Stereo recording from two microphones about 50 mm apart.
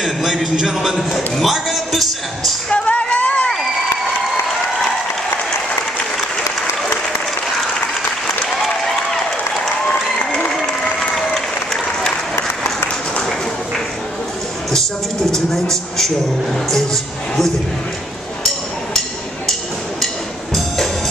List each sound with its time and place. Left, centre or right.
0.0 s a man's voice: centre
2.7 s a sound: left
8.6 s applause: centre
14.7 s a sound: centre
16.5 s music: centre
20.5 s music: centre